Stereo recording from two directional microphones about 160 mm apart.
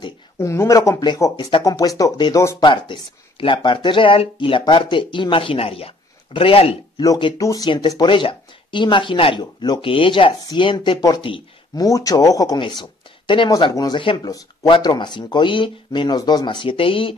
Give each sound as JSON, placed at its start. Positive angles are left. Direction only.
{"t": 0.4, "sound": "speech", "side_deg": 20}
{"t": 7.0, "sound": "speech", "side_deg": 25}
{"t": 11.8, "sound": "speech", "side_deg": 20}